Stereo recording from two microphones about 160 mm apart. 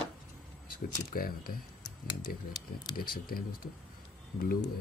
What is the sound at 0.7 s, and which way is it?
Speech, 65° left (ahead or behind).